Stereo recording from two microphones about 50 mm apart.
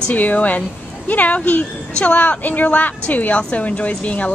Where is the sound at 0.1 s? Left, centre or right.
Left.